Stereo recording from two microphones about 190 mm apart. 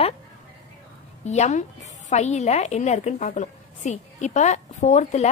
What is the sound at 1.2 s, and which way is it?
A woman's voice, 35° left (ahead or behind).